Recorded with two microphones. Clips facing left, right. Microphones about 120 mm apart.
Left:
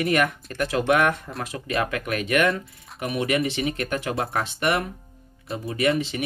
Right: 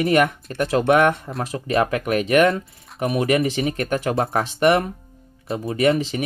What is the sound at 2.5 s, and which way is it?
Speech, centre (ahead or behind).